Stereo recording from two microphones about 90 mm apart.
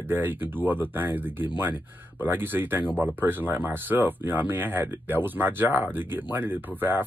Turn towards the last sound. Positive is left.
turn(degrees=-20)  # may be behind; listen again after turning